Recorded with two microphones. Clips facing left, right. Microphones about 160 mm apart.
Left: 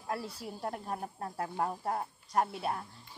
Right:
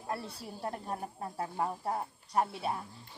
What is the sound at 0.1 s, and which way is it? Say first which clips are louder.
A woman's voice: left 1 dB; centre (ahead or behind).